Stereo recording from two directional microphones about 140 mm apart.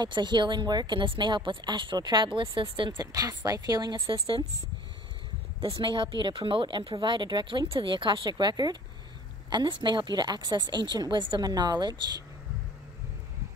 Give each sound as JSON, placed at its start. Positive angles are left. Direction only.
{"t": 0.0, "sound": "a woman's voice", "side_deg": -35}
{"t": 5.8, "sound": "a woman's voice", "side_deg": -35}